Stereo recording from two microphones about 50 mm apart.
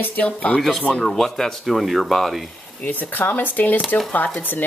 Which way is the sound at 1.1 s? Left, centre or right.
Centre.